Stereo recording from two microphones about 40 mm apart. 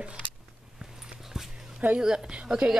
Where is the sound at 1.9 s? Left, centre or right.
Centre.